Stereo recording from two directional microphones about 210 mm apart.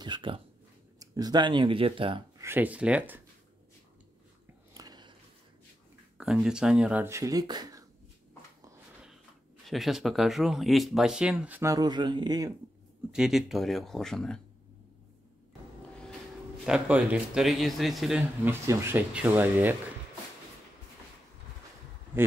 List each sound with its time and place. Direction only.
0.0 s a sound: 25° right (ahead or behind)
0.9 s speech: 15° right (ahead or behind)
2.4 s speech: 10° right (ahead or behind)
4.7 s a sound: 20° right (ahead or behind)
6.1 s speech: 5° right (ahead or behind)
9.7 s speech: centre (ahead or behind); by 12.5 s 20° right (ahead or behind)
13.1 s speech: centre (ahead or behind)
16.6 s speech: 5° right (ahead or behind)